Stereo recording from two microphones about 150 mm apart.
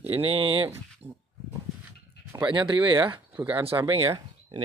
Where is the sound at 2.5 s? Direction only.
35° right (ahead or behind).